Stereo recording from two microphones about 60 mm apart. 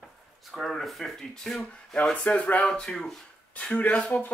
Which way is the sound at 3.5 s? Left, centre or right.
Left.